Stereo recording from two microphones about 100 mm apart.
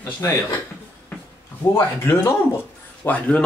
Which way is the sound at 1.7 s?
25° left (ahead or behind).